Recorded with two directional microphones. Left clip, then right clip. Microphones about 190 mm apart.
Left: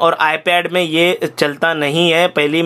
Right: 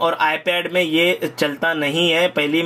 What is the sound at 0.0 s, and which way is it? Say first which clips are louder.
Speech: left 4 dB; 25° left (ahead or behind).